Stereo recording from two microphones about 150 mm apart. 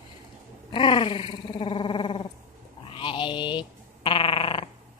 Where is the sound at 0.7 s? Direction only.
35° left (ahead or behind).